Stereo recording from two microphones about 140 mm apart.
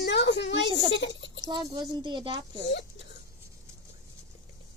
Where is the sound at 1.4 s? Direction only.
30° right (ahead or behind).